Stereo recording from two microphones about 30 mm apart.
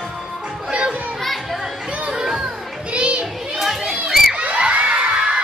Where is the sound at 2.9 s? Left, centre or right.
Right.